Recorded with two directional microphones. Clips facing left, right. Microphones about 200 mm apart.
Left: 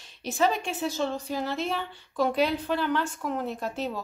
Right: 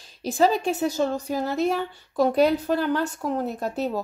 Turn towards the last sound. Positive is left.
turn(degrees=-40)  # may be behind; listen again after turning